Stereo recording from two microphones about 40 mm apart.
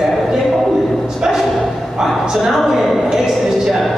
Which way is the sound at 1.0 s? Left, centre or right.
Centre.